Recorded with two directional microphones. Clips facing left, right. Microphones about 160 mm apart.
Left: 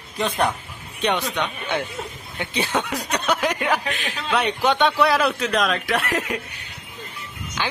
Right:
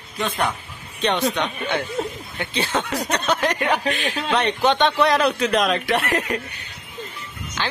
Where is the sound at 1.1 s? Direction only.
10° right (ahead or behind).